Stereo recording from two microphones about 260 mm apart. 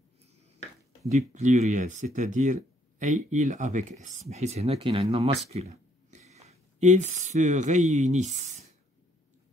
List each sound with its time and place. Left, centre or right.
1.1 s speech: right